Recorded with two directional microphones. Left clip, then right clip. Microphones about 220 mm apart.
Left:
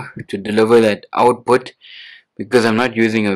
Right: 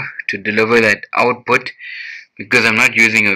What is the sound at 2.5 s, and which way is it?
Speech, 45° left (ahead or behind).